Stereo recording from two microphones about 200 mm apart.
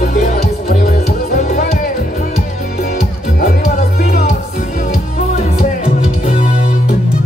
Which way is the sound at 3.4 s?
45° left (ahead or behind).